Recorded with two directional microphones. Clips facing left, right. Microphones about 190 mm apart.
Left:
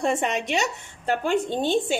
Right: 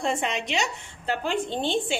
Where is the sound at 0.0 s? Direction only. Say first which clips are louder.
Left 3 dB; 45° left (ahead or behind).